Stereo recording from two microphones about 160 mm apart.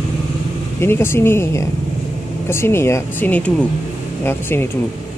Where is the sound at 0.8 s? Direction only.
15° left (ahead or behind).